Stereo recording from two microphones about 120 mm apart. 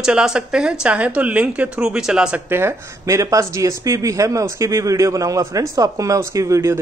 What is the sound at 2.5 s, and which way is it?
Speech, 25° right (ahead or behind).